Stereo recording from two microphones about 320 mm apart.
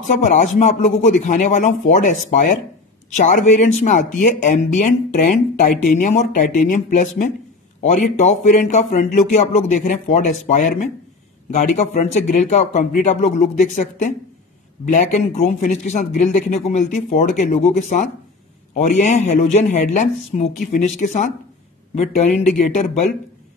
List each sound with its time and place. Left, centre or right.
0.1 s speech: left